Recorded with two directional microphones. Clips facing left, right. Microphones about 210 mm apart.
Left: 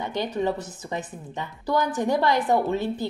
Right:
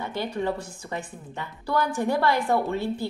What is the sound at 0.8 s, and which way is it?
A woman's voice, 20° left (ahead or behind).